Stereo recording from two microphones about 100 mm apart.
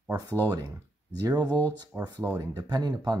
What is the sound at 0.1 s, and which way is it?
Speech, 35° right (ahead or behind).